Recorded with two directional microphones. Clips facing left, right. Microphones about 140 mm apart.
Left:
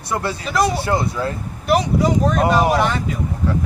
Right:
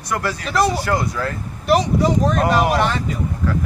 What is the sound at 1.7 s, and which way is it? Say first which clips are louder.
Speech: even; centre (ahead or behind).